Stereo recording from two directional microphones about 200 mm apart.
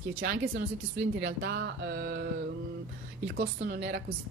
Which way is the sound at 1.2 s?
60° right (ahead or behind).